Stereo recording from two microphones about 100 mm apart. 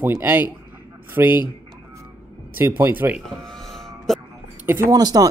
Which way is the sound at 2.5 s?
25° right (ahead or behind).